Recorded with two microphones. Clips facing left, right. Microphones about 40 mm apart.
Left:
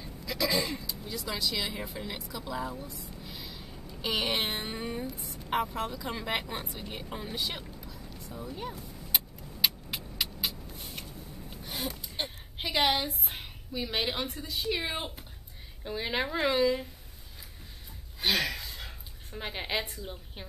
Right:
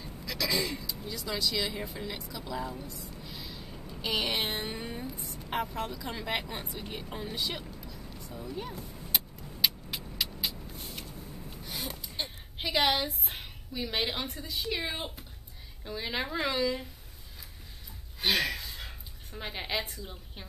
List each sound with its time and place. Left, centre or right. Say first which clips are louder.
0.0 s speech: left 2 dB; centre
3.2 s a sound: even; centre
4.0 s speech: left 1 dB; centre
9.1 s vehicle: even; centre
11.5 s gasp: left 3 dB; left
12.2 s a sound: left 2 dB; left
12.5 s a woman's voice: even; centre
18.2 s speech: even; centre